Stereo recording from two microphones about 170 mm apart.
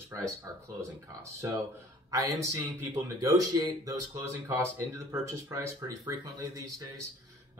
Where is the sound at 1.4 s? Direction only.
20° right (ahead or behind).